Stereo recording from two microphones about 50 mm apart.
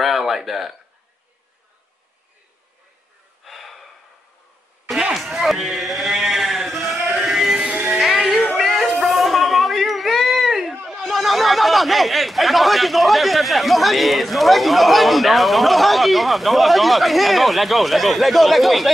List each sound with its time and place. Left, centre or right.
0.0 s speech: centre
3.4 s gasp: centre
5.1 s a sound: centre
7.2 s music: centre
7.6 s music: right
8.0 s music: centre
8.5 s a sound: centre
10.9 s speech: centre